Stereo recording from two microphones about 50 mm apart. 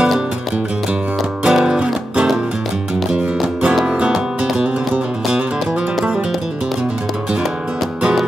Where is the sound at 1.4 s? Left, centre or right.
Centre.